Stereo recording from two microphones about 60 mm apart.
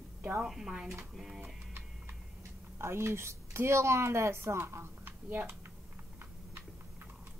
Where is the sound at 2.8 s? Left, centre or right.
Right.